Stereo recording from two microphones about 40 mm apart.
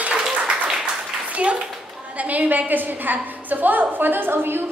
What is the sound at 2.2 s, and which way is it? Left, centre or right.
A woman's voice, right.